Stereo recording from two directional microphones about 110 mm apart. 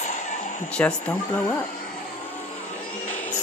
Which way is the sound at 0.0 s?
90° left.